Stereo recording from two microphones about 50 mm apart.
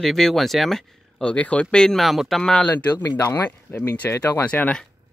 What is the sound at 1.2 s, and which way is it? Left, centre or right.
Speech, left.